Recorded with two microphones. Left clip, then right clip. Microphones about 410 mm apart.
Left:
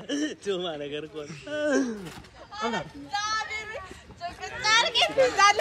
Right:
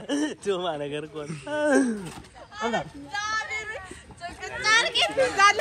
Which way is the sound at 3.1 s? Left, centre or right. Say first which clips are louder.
Even; centre.